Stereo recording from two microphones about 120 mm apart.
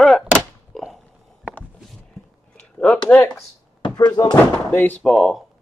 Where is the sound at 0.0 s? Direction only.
Centre (ahead or behind).